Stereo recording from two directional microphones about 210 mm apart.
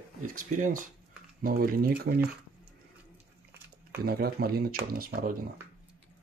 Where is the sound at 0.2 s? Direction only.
40° right (ahead or behind).